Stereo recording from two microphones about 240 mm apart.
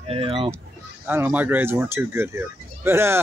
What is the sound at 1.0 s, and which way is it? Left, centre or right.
Speech, centre.